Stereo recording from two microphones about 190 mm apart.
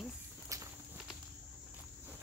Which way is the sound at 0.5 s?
15° right (ahead or behind).